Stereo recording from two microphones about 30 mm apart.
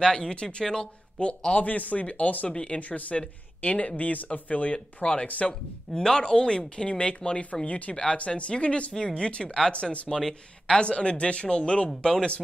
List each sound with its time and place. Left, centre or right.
0.0 s speech: left
1.6 s speech: left
2.5 s speech: left
2.8 s speech: left
3.9 s speech: left
5.5 s speech: left
7.6 s speech: left
7.9 s speech: left
10.0 s speech: centre
10.7 s speech: left
12.0 s speech: left